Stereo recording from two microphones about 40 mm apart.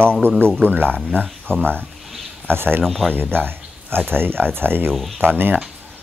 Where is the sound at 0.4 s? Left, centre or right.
Right.